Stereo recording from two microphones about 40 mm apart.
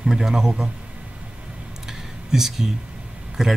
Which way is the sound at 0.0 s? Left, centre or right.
Centre.